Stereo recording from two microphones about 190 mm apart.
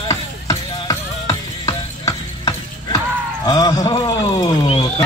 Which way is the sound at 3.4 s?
20° left (ahead or behind).